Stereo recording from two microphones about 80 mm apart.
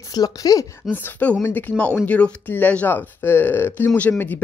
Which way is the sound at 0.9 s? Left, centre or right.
Left.